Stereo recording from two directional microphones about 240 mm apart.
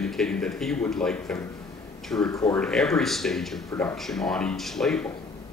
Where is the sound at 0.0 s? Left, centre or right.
Centre.